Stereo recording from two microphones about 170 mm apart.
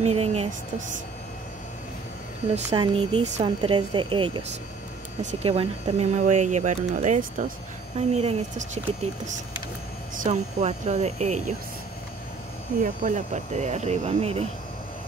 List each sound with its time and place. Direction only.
0.0 s speech: 40° right (ahead or behind)
2.7 s speech: 30° right (ahead or behind); by 7.5 s 50° right (ahead or behind)
8.1 s speech: 40° right (ahead or behind)
12.8 s speech: 50° right (ahead or behind)